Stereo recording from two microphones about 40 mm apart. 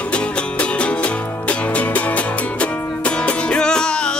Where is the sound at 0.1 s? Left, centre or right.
Left.